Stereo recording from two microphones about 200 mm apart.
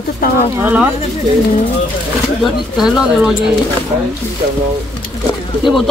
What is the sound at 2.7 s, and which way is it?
Speech, centre (ahead or behind).